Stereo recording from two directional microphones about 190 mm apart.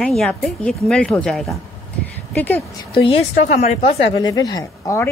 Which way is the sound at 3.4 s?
40° left (ahead or behind).